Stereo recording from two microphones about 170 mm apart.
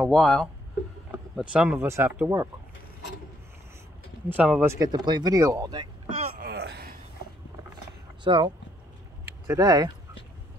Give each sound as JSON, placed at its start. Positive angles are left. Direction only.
{"t": 0.0, "sound": "speech", "side_deg": 0}
{"t": 4.4, "sound": "speech", "side_deg": -10}
{"t": 6.3, "sound": "a sound", "side_deg": -70}
{"t": 8.2, "sound": "speech", "side_deg": -30}
{"t": 9.5, "sound": "speech", "side_deg": -20}